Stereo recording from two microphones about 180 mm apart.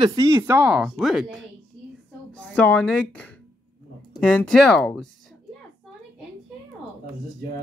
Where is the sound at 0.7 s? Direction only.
5° right (ahead or behind).